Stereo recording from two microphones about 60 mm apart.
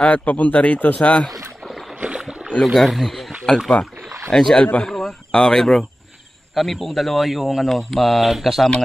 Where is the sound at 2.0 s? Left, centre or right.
Centre.